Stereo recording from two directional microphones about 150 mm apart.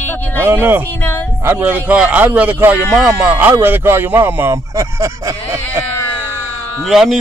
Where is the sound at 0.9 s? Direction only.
15° left (ahead or behind).